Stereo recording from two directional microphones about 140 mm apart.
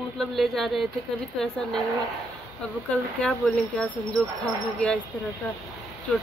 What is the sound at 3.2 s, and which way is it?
Speech, 5° left (ahead or behind).